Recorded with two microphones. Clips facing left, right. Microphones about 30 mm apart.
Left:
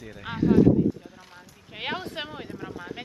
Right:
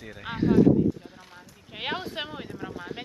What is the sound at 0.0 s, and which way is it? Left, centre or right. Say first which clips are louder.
Speech: left 1 dB; centre.